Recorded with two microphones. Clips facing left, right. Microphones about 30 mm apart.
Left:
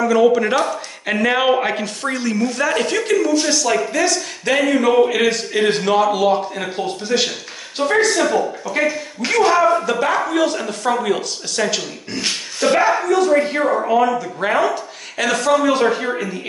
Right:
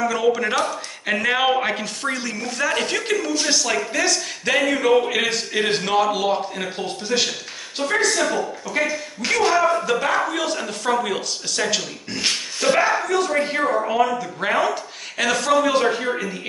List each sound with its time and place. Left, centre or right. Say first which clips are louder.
0.0 s a woman's voice: left 6 dB; centre